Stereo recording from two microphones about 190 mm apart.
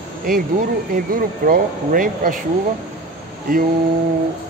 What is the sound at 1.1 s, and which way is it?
Speech, 50° right (ahead or behind).